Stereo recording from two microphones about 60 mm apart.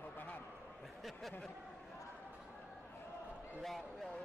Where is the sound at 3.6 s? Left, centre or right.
Centre.